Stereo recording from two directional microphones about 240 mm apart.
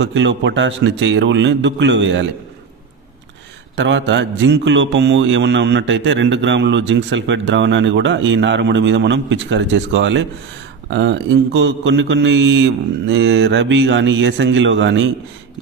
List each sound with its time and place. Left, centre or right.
0.0 s a man's voice: right
3.7 s a man's voice: right